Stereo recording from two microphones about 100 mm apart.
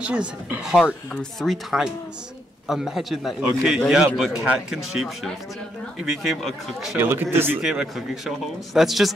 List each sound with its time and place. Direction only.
0.0 s speech: 10° right (ahead or behind)
7.0 s speech: 20° right (ahead or behind)
7.6 s speech: 5° right (ahead or behind)